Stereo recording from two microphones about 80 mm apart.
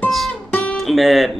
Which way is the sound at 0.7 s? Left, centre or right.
Centre.